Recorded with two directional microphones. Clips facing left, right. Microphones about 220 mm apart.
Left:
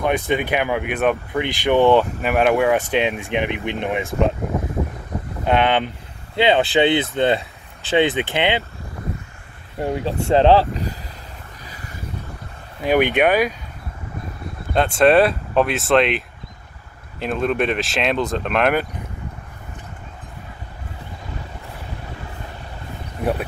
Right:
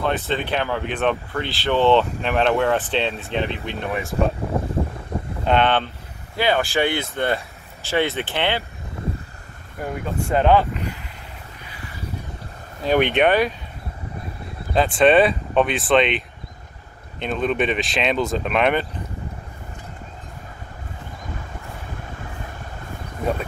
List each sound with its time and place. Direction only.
0.0 s speech: 15° left (ahead or behind)
5.4 s speech: 10° left (ahead or behind)
9.8 s speech: 25° left (ahead or behind)
11.6 s a sound: 40° left (ahead or behind)
12.8 s speech: 10° left (ahead or behind)
14.7 s speech: centre (ahead or behind)